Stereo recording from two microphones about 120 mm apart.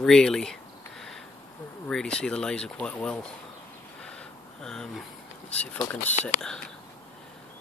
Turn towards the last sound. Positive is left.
turn(degrees=5)  # may be behind; listen again after turning